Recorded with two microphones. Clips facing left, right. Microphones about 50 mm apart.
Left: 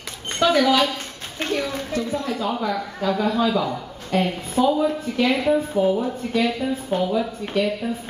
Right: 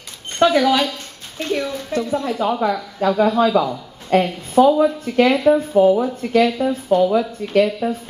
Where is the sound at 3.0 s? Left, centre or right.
Right.